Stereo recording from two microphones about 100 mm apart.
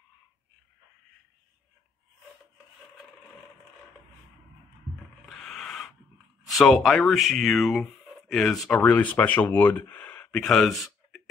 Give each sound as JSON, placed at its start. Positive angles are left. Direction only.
{"t": 5.3, "sound": "a sound", "side_deg": 5}
{"t": 6.4, "sound": "speech", "side_deg": 0}
{"t": 8.8, "sound": "speech", "side_deg": 15}
{"t": 10.4, "sound": "speech", "side_deg": 5}